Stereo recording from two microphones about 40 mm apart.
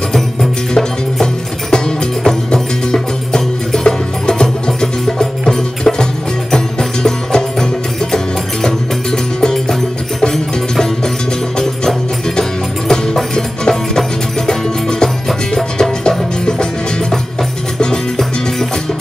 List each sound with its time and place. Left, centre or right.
0.1 s music: centre
8.6 s music: centre
17.7 s music: centre